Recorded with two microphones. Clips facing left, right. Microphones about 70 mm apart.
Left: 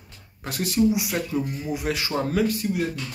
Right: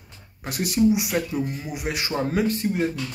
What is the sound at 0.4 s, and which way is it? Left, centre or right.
Speech, right.